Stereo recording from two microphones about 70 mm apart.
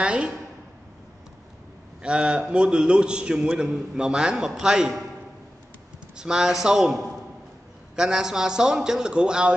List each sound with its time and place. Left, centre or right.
0.0 s a sound: centre
2.0 s a man's voice: centre
6.1 s a man's voice: centre